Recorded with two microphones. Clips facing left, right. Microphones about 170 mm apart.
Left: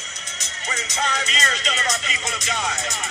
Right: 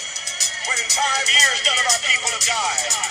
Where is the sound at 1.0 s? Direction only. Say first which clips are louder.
Even; 35° right (ahead or behind).